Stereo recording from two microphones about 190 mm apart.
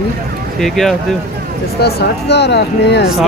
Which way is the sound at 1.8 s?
55° left (ahead or behind).